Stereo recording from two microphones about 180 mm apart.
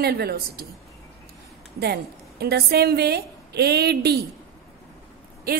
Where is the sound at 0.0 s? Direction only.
60° right (ahead or behind).